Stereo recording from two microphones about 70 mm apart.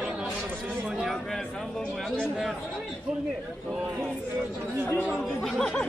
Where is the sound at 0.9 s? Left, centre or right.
Centre.